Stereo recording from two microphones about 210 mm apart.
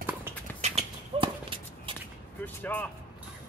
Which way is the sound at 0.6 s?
30° right (ahead or behind).